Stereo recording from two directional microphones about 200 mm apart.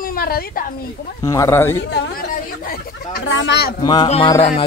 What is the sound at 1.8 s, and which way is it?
Speech, 60° left (ahead or behind).